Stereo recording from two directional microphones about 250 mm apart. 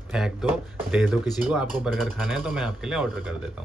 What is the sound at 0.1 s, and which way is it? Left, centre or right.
Speech, centre.